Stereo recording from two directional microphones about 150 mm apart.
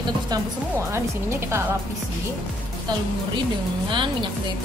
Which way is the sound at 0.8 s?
15° right (ahead or behind).